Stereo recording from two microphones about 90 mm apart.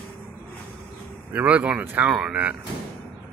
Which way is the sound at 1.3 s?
15° right (ahead or behind).